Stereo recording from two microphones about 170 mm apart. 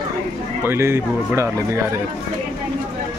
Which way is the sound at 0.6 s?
15° right (ahead or behind).